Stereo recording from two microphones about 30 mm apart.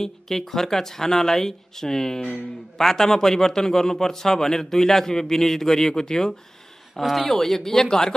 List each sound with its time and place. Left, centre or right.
0.0 s a man's voice: centre
7.0 s a man's voice: centre